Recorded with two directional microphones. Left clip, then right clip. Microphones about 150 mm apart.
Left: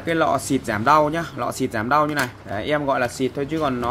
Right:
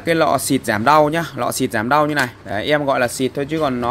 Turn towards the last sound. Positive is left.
turn(degrees=-50)  # may be behind; listen again after turning